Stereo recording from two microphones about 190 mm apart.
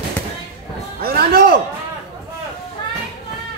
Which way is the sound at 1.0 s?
55° right (ahead or behind).